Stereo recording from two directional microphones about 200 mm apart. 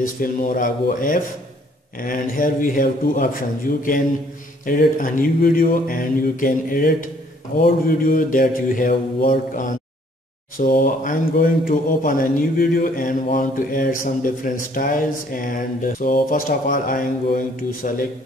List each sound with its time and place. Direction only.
0.0 s speech: 40° left (ahead or behind)
4.6 s speech: 45° left (ahead or behind)